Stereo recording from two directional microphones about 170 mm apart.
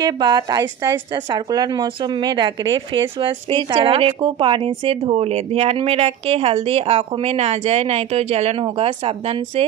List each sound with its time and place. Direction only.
0.0 s a woman's voice: 25° right (ahead or behind)